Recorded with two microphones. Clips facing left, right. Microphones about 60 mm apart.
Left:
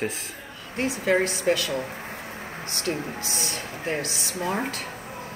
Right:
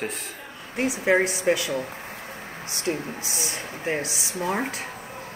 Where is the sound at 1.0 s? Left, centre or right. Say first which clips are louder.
Right 2 dB; centre.